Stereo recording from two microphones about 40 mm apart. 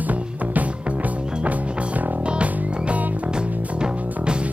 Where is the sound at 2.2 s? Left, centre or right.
Right.